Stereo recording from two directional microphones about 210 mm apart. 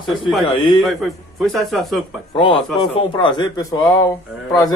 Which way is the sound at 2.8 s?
25° left (ahead or behind).